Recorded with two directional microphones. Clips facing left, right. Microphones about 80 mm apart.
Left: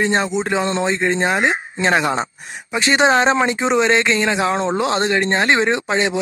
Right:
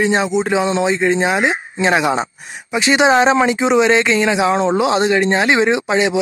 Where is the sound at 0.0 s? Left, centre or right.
Centre.